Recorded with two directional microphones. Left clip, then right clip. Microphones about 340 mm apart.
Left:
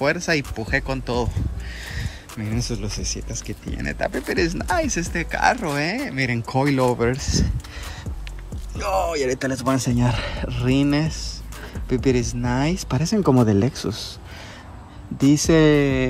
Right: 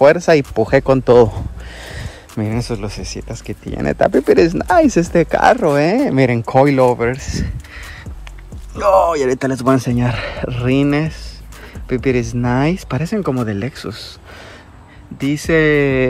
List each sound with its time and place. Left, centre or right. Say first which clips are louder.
0.0 s speech: right 11 dB; centre
3.9 s speech: right 13 dB; left
4.4 s speech: right 6 dB; centre
15.1 s speech: right 2 dB; centre